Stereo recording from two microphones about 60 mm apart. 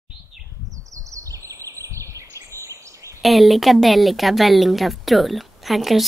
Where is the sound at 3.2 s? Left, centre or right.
Centre.